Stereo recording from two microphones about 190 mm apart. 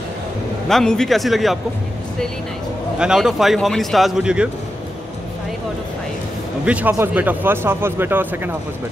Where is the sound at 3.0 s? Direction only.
5° right (ahead or behind).